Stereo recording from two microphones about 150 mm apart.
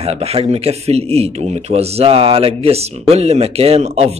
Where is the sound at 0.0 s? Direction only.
40° right (ahead or behind).